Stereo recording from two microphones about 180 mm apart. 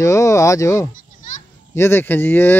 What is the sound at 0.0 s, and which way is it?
Speech, 15° left (ahead or behind).